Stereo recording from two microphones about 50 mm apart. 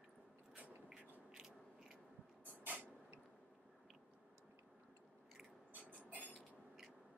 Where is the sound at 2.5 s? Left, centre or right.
Right.